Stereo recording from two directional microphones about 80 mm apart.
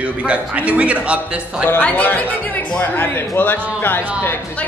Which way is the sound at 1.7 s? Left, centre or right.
Centre.